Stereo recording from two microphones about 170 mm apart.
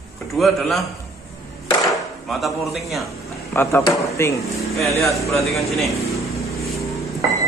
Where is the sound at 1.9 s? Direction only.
Centre (ahead or behind).